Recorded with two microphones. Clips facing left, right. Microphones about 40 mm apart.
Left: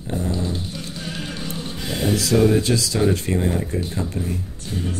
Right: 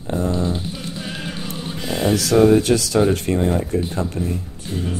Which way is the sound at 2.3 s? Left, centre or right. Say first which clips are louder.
Right 4 dB; centre.